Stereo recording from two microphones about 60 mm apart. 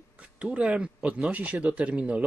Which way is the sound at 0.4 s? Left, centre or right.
Centre.